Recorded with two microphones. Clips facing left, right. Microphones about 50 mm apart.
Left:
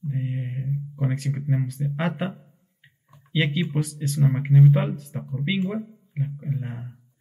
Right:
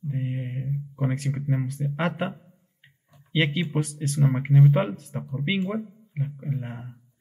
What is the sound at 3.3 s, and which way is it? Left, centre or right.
Speech, right.